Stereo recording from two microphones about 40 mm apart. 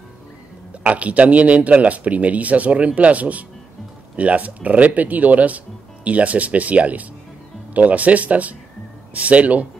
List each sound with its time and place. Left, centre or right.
0.8 s speech: right